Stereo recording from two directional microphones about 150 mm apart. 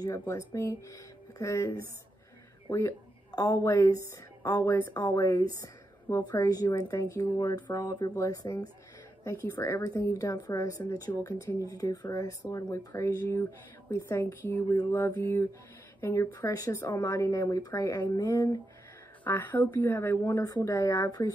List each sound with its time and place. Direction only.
0.5 s a woman's voice: 20° left (ahead or behind)
14.7 s speech: 25° left (ahead or behind)
16.0 s speech: 15° left (ahead or behind)